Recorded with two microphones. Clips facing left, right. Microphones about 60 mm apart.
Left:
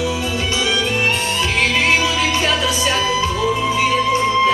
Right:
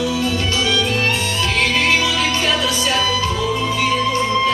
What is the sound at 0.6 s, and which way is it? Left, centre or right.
Music, centre.